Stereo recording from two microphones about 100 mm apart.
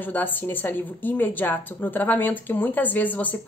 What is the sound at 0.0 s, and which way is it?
A woman's voice, 20° left (ahead or behind).